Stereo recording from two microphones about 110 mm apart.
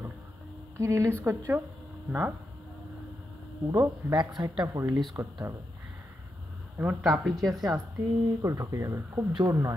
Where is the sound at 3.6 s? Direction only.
30° right (ahead or behind).